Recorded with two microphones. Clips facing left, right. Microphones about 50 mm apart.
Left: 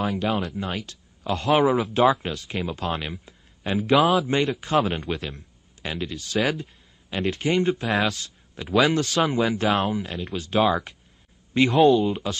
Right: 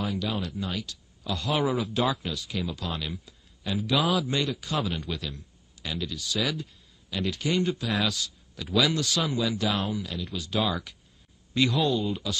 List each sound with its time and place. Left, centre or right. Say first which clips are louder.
0.0 s speech: left 6 dB; left